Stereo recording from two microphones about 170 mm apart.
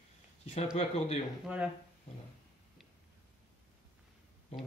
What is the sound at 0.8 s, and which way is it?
Speech, 40° left (ahead or behind).